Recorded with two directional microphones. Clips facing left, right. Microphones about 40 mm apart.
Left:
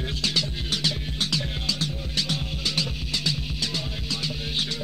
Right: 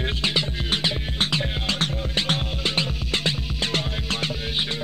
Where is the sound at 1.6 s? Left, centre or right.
Right.